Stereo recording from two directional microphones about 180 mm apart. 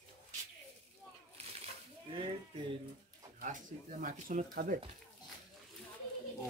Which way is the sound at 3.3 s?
45° right (ahead or behind).